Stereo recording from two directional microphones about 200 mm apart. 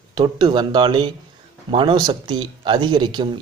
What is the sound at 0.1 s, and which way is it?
Speech, 20° right (ahead or behind).